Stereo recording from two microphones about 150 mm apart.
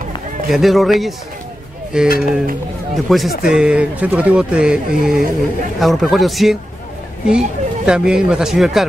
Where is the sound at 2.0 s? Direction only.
80° left.